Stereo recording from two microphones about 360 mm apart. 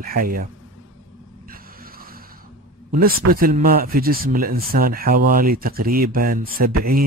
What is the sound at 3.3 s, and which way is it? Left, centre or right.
A man's voice, right.